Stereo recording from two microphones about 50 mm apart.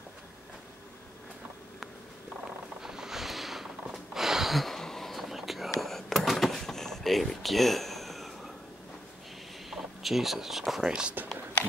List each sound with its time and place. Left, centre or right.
2.8 s a sound: centre
9.7 s speech: centre
11.2 s speech: right